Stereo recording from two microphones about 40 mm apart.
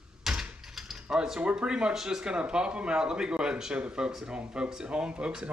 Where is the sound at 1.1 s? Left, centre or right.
Centre.